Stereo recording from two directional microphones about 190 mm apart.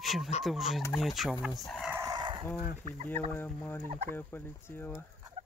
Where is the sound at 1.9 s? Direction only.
20° right (ahead or behind).